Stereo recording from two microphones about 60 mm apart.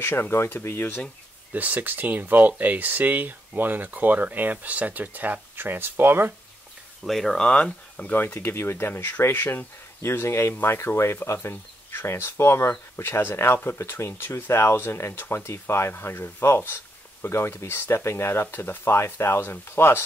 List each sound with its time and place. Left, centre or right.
0.0 s speech: left
1.5 s speech: right
7.1 s speech: centre
8.1 s speech: left